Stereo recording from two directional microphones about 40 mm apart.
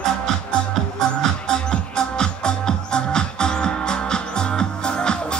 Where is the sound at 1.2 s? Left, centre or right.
Centre.